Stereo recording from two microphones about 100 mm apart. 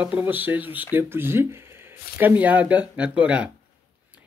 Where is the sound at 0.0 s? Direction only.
15° right (ahead or behind).